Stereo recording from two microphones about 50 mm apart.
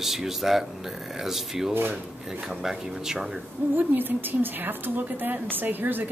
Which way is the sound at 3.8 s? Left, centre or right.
Right.